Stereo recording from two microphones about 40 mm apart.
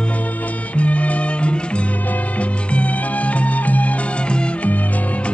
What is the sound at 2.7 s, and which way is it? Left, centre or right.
Music, left.